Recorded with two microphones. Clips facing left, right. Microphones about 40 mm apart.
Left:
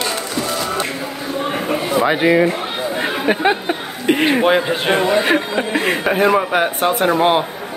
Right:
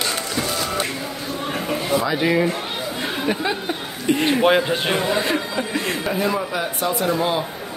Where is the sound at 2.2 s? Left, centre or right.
Left.